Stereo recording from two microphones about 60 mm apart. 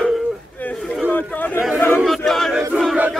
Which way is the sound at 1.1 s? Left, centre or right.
Left.